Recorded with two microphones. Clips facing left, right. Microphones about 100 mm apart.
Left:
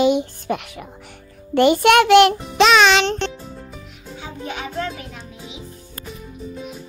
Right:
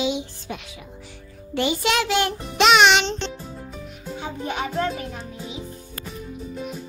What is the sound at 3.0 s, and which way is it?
Music, 60° left (ahead or behind).